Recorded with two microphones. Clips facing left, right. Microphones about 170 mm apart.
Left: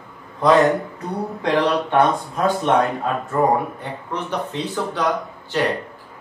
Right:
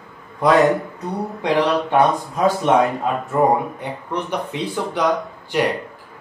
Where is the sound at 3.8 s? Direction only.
15° right (ahead or behind).